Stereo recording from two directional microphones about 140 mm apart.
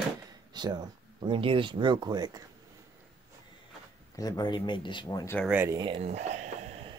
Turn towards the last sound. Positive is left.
turn(degrees=-55)  # may be behind; listen again after turning